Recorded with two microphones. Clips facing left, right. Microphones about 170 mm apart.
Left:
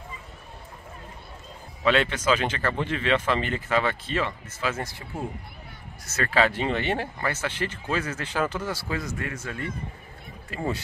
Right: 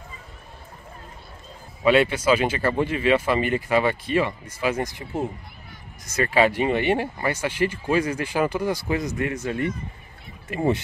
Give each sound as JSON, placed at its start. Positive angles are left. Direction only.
{"t": 1.9, "sound": "speech", "side_deg": -10}